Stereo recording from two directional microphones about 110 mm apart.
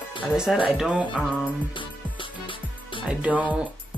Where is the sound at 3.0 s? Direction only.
10° right (ahead or behind).